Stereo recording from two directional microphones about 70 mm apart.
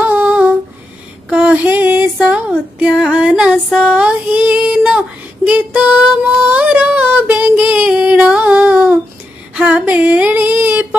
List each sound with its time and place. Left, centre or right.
0.0 s humming: right
1.3 s a sound: centre
1.7 s music: right
2.9 s female singing: centre
3.2 s music: centre
3.7 s female singing: centre
9.6 s a sound: centre